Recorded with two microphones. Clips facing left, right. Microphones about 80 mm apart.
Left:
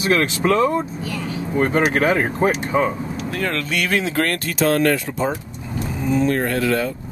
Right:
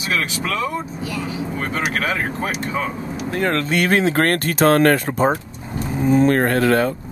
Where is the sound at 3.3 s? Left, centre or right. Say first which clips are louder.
Right 4 dB; right.